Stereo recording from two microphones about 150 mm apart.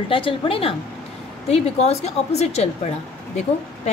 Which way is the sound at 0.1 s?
35° left (ahead or behind).